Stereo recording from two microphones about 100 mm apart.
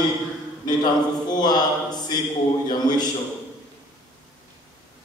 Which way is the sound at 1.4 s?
45° left (ahead or behind).